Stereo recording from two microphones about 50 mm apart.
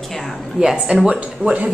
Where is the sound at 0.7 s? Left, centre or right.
Centre.